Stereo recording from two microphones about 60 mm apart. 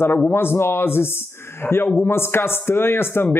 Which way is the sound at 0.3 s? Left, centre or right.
Left.